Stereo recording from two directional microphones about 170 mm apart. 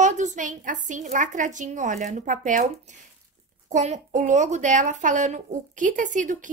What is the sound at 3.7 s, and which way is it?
A woman's voice, 45° right (ahead or behind).